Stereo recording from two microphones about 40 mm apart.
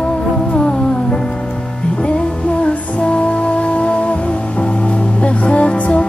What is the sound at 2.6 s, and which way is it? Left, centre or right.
Music, left.